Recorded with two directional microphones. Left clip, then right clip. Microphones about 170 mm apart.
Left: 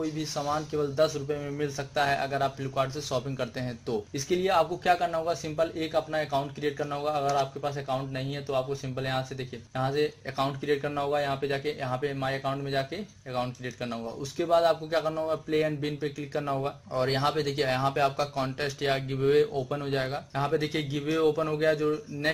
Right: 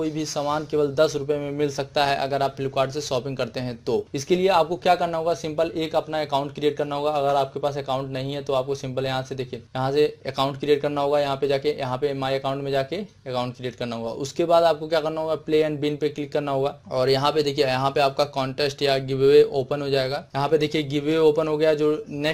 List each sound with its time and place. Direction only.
0.2 s speech: 30° right (ahead or behind)